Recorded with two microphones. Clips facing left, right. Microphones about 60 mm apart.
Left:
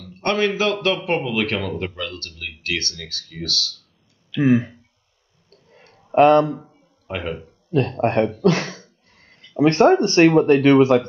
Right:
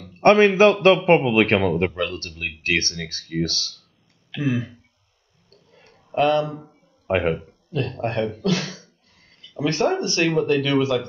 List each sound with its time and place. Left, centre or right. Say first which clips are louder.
0.0 s a man's voice: right 6 dB; right
4.4 s speech: left 7 dB; left
5.5 s a sound: left 2 dB; left
7.1 s speech: right 7 dB; right
7.7 s speech: left 6 dB; left